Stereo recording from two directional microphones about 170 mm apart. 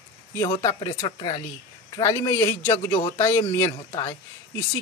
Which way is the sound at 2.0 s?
15° left (ahead or behind).